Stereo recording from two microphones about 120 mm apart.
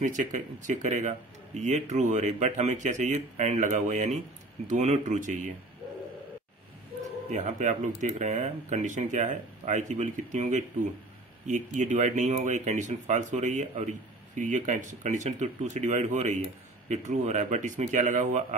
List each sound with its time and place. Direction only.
0.0 s speech: 90° right
7.2 s speech: 90° right